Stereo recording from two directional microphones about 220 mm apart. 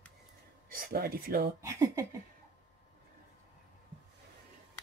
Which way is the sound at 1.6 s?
15° right (ahead or behind).